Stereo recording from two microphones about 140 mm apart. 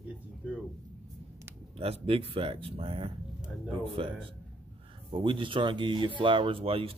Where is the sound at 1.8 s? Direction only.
40° right (ahead or behind).